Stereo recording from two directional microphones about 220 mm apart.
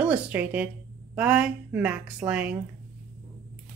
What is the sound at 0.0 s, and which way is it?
A woman's voice, 5° right (ahead or behind).